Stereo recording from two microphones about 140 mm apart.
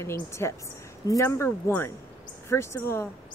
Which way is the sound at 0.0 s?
20° left (ahead or behind).